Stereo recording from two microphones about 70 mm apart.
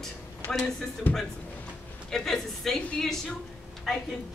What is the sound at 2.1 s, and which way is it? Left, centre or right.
Speech, centre.